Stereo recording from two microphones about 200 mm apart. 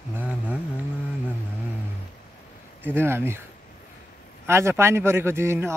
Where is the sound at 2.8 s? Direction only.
10° right (ahead or behind).